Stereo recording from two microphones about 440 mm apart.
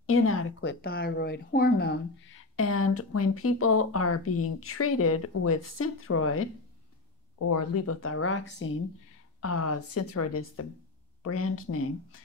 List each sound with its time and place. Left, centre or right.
0.0 s a woman's voice: left